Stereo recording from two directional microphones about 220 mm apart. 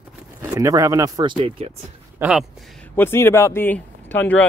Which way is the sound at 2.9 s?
10° left (ahead or behind).